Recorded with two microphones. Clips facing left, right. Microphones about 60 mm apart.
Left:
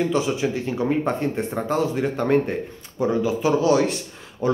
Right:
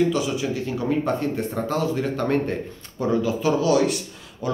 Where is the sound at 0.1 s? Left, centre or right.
Left.